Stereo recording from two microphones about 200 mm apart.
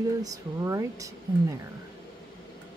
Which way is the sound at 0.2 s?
15° right (ahead or behind).